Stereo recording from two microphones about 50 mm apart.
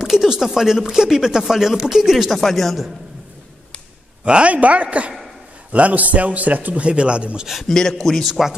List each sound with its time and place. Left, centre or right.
0.0 s a man's voice: centre
4.2 s a man's voice: right
7.6 s a man's voice: centre
8.3 s speech: centre